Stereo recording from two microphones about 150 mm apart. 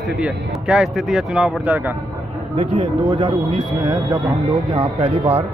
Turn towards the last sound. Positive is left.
turn(degrees=-40)  # may be behind; listen again after turning